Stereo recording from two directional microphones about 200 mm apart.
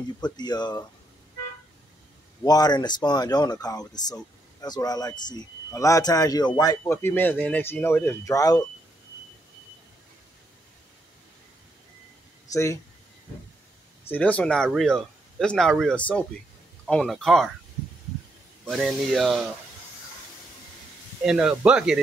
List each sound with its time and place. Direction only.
0.2 s speech: 20° left (ahead or behind)
2.4 s speech: 20° left (ahead or behind)
14.0 s speech: 10° left (ahead or behind)
18.7 s speech: centre (ahead or behind)
21.2 s speech: 5° right (ahead or behind)